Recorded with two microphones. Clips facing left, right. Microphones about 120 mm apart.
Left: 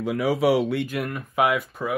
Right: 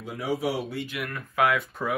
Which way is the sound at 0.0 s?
80° left.